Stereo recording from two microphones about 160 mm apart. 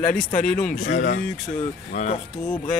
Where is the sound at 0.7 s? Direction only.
55° left (ahead or behind).